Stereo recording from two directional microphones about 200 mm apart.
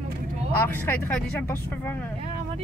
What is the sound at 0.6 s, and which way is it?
Speech, 10° left (ahead or behind).